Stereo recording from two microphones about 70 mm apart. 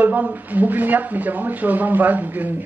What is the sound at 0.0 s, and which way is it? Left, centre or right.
Speech, right.